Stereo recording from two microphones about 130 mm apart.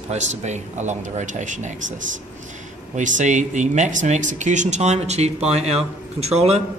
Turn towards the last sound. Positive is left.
turn(degrees=-55)  # may be behind; listen again after turning